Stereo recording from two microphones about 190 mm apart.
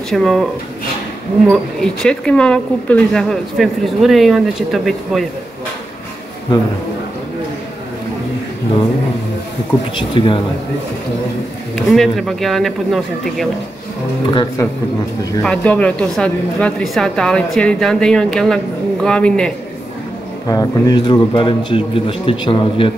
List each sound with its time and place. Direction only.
0.1 s a woman's voice: centre (ahead or behind)
1.5 s a woman's voice: 5° left (ahead or behind)
9.9 s a man's voice: 25° left (ahead or behind)
11.7 s a woman's voice: centre (ahead or behind)
14.3 s a man's voice: 25° left (ahead or behind)
15.4 s a woman's voice: 5° left (ahead or behind)
20.4 s a man's voice: 20° left (ahead or behind)